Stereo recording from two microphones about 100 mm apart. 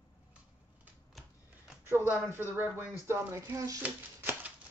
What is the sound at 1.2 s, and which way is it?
Typewriter, centre (ahead or behind).